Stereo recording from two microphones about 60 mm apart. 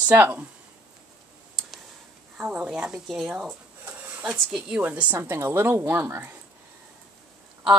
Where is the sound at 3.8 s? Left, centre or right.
Right.